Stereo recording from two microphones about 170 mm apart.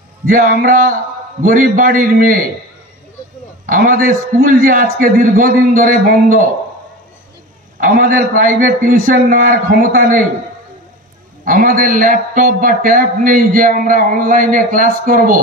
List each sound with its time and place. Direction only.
0.3 s a man's voice: 55° right (ahead or behind)
3.6 s speech: 55° right (ahead or behind)
7.8 s speech: 55° right (ahead or behind)
11.4 s speech: 55° right (ahead or behind)